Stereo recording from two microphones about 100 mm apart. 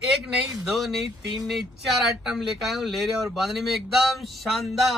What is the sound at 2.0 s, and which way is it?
Speech, 5° right (ahead or behind).